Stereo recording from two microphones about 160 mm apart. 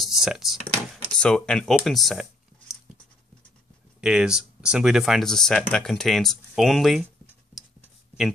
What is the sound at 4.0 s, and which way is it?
Speech, 5° right (ahead or behind).